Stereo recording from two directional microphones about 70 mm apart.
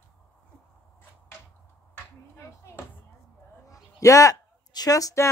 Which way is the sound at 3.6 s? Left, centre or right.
Left.